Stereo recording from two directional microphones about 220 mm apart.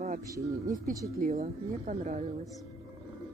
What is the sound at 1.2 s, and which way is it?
A woman's voice, 35° right (ahead or behind).